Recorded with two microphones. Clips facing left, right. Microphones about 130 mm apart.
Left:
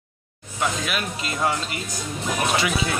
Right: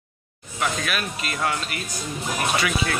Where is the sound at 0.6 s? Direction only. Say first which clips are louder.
Left 1 dB; 20° left (ahead or behind).